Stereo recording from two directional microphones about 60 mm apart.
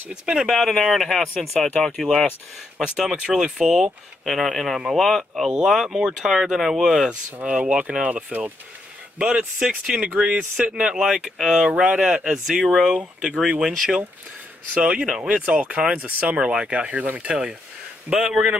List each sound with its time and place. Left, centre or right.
0.1 s speech: centre
0.5 s speech: centre
5.5 s speech: centre
9.2 s speech: centre
10.0 s speech: right; by 12.9 s centre
12.9 s speech: centre
15.4 s speech: right